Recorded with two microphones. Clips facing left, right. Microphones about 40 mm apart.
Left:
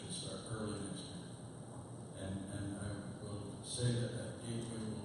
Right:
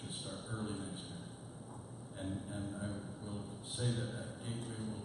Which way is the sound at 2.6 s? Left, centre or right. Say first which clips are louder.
Right 2 dB; centre.